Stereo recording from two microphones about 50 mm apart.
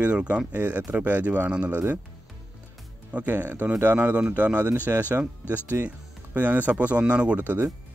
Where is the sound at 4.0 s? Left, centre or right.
Right.